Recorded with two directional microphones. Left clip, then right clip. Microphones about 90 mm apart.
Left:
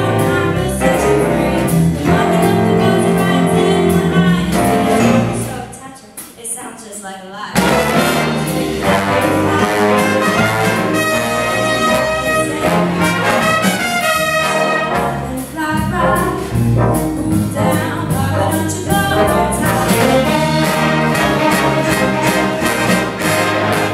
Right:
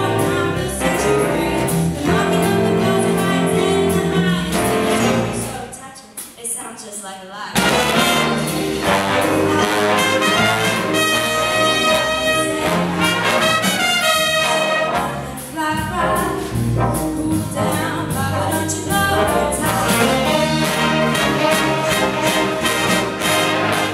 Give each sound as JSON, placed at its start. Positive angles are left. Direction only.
{"t": 0.8, "sound": "music", "side_deg": -5}
{"t": 7.5, "sound": "music", "side_deg": -5}
{"t": 18.9, "sound": "music", "side_deg": 0}